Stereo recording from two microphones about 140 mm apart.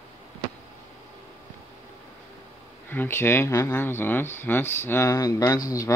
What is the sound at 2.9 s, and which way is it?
Speech, 15° left (ahead or behind).